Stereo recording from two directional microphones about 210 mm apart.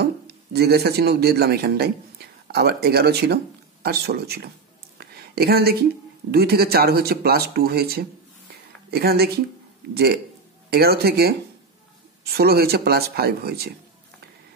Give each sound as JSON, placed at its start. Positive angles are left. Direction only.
{"t": 0.0, "sound": "a man's voice", "side_deg": -50}
{"t": 4.9, "sound": "a sound", "side_deg": -50}
{"t": 6.3, "sound": "speech", "side_deg": -50}
{"t": 12.4, "sound": "speech", "side_deg": -50}